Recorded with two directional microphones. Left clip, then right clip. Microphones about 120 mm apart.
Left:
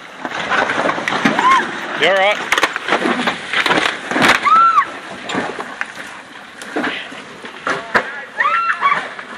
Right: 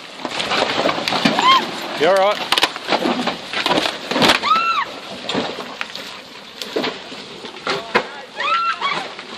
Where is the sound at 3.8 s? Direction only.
10° left (ahead or behind).